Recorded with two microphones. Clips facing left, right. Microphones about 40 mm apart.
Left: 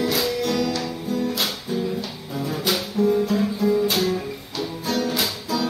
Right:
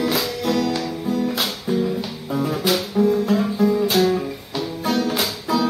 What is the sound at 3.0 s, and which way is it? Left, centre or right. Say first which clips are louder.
Guitar: right 2 dB; centre.